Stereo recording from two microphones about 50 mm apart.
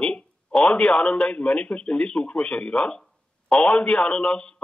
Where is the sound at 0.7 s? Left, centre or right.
Centre.